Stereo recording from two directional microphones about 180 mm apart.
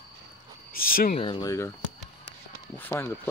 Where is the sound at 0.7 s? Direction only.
55° left (ahead or behind).